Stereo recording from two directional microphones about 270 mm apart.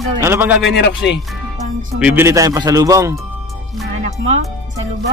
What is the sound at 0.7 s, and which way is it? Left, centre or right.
Speech, left.